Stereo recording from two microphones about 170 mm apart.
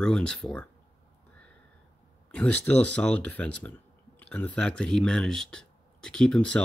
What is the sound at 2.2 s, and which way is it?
Speech, 10° left (ahead or behind).